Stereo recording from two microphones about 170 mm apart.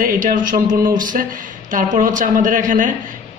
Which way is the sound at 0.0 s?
55° right (ahead or behind).